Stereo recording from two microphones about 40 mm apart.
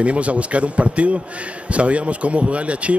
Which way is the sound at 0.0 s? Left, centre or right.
Right.